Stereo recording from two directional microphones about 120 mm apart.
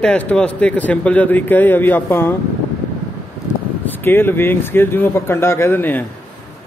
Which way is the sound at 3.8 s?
15° left (ahead or behind).